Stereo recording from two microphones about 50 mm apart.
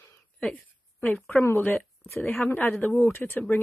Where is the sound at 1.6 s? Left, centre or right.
Left.